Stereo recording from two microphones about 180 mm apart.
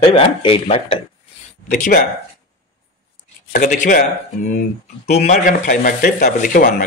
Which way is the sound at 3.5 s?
45° left (ahead or behind).